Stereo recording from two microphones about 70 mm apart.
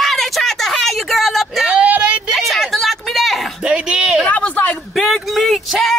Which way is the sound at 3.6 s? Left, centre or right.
Centre.